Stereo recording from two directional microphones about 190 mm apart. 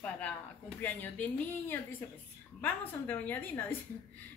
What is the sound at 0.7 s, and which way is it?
Speech, 10° left (ahead or behind).